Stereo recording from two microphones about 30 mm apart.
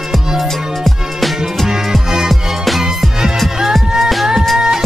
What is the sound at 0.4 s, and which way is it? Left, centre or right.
Music, centre.